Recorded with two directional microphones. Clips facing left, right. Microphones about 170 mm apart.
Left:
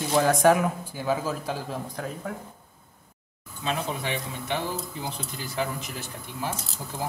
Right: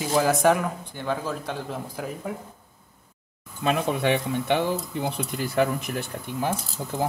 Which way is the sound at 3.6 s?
60° right (ahead or behind).